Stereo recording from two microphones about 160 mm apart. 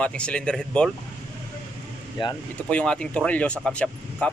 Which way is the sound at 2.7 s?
5° left (ahead or behind).